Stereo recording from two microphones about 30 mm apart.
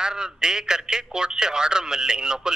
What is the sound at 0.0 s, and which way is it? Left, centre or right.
Speech, right.